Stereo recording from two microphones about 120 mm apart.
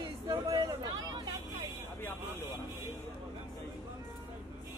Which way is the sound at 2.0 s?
20° left (ahead or behind).